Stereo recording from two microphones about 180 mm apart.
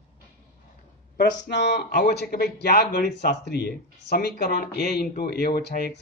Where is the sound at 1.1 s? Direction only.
75° left (ahead or behind).